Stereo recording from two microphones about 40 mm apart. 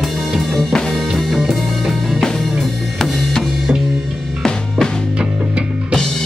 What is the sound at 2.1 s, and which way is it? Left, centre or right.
Drum kit, centre.